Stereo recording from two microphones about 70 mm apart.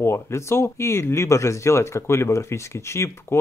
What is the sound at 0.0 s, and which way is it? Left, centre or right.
Speech, left.